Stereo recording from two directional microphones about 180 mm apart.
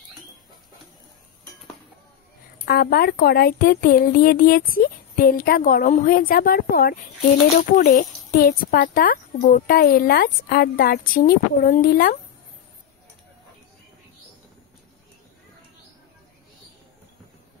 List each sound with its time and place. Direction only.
2.6 s a woman's voice: 60° left (ahead or behind)